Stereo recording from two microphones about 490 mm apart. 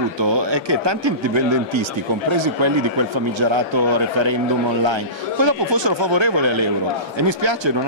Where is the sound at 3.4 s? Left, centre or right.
Right.